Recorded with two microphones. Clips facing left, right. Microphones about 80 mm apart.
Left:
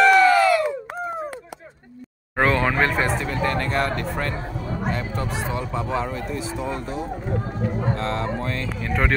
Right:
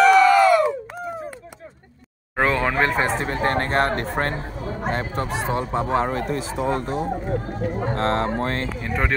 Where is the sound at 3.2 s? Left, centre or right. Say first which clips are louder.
Right 2 dB; right.